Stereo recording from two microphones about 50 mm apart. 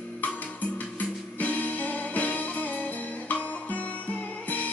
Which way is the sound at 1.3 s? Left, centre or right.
Left.